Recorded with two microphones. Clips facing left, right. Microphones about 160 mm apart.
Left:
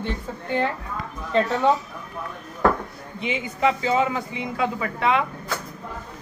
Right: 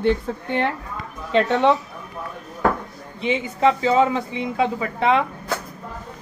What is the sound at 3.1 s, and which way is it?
Speech, 30° right (ahead or behind).